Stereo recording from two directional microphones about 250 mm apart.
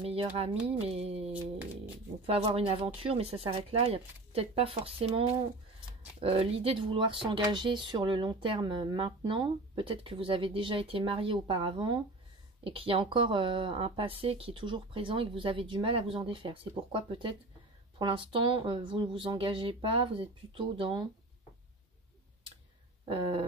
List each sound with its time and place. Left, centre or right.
0.0 s speech: right
2.2 s speech: right